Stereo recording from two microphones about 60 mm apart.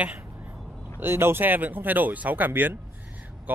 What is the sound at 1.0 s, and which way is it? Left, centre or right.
Speech, right.